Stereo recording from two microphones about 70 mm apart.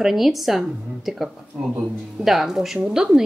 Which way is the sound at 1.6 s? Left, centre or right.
Centre.